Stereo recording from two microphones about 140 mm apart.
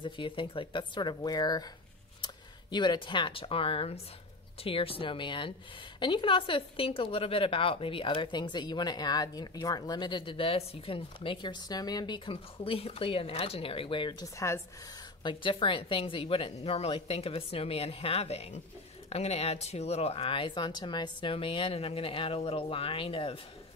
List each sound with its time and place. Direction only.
0.0 s speech: 35° left (ahead or behind)
14.2 s speech: 20° left (ahead or behind)
15.2 s speech: 35° left (ahead or behind)